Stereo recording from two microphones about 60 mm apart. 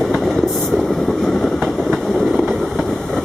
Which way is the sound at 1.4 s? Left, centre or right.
Centre.